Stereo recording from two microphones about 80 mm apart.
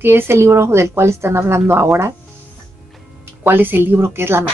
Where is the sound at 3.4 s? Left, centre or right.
Right.